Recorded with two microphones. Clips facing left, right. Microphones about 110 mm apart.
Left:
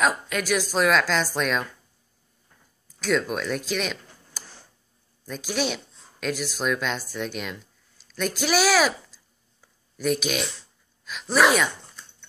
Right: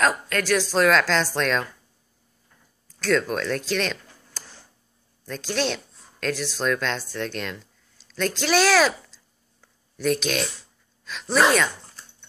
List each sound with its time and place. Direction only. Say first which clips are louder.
0.0 s a woman's voice: right 1 dB; 5° left (ahead or behind)
2.9 s a woman's voice: right 2 dB; 5° left (ahead or behind)